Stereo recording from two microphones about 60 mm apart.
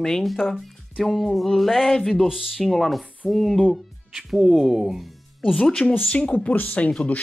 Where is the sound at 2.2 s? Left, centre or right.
Centre.